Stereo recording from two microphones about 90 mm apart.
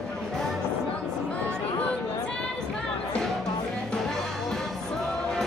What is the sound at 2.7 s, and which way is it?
Music, 5° left (ahead or behind).